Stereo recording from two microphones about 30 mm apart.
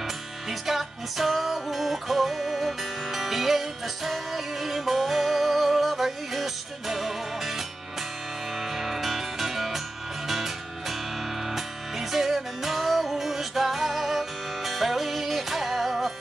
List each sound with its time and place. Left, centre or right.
0.5 s music: centre